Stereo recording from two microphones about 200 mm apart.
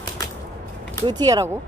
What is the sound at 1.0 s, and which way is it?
Speech, 20° right (ahead or behind).